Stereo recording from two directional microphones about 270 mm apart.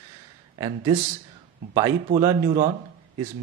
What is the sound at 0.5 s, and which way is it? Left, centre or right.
Speech, centre.